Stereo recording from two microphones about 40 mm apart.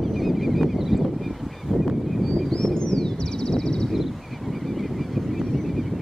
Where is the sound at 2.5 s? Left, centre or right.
Centre.